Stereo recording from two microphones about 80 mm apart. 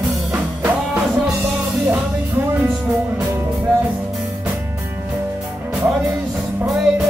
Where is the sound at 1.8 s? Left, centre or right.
Centre.